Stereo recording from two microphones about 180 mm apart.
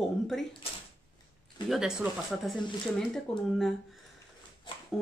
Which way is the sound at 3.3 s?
5° left (ahead or behind).